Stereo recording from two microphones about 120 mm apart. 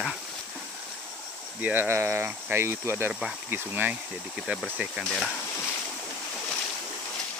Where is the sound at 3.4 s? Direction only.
15° right (ahead or behind).